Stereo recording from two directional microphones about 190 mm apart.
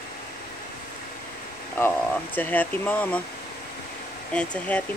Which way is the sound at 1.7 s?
10° left (ahead or behind).